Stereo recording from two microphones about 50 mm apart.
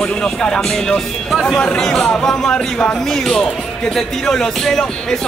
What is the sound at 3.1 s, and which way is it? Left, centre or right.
Speech, centre.